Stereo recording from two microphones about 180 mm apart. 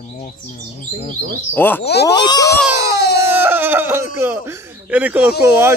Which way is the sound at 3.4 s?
10° right (ahead or behind).